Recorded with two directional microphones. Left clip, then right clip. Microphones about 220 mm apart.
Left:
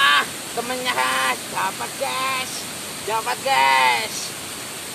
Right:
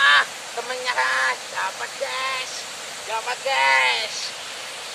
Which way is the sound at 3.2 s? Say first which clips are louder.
Left 2 dB; 20° left (ahead or behind).